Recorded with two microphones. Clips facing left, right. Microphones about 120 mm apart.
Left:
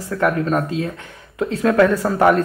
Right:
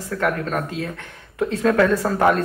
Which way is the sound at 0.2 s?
25° left (ahead or behind).